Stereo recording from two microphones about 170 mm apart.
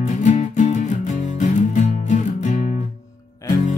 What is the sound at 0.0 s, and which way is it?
Music, 45° left (ahead or behind).